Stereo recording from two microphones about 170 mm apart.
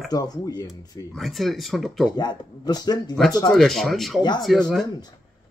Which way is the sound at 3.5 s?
Centre (ahead or behind).